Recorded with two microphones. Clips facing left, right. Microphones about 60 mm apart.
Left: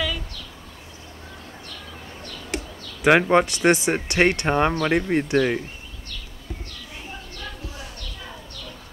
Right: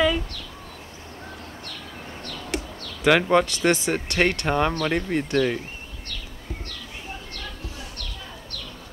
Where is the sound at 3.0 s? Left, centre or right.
Left.